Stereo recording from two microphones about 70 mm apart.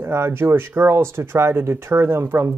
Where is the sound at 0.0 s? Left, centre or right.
Right.